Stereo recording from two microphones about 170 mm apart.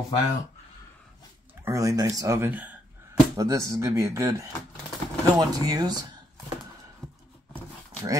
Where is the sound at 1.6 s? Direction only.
20° right (ahead or behind).